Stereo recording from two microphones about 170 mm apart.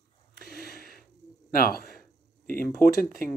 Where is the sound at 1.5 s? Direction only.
60° left (ahead or behind).